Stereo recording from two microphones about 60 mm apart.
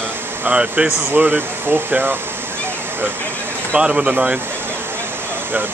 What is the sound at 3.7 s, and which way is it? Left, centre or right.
Speech, centre.